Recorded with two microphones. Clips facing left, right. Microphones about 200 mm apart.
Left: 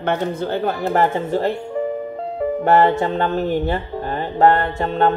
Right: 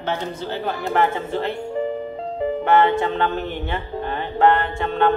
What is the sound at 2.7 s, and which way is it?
Music, 40° left (ahead or behind).